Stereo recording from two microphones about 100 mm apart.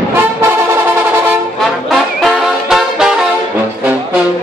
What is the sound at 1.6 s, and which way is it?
Music, centre (ahead or behind).